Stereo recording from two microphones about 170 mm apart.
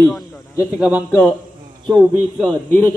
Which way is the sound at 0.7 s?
5° right (ahead or behind).